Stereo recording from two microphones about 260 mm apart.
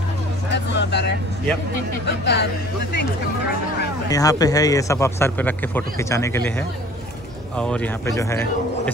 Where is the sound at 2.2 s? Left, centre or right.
Left.